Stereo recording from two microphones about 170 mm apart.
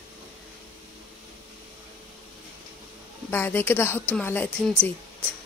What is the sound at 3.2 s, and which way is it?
Speech, 15° left (ahead or behind).